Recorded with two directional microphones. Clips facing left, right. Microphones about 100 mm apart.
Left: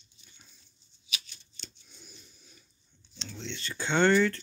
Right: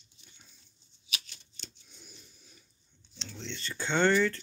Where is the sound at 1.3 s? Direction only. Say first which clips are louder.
Even; 90° right.